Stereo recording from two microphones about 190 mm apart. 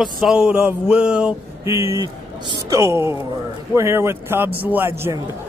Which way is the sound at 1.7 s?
15° right (ahead or behind).